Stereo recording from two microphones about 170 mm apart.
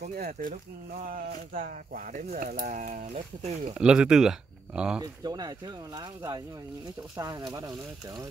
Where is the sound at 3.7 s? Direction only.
5° right (ahead or behind).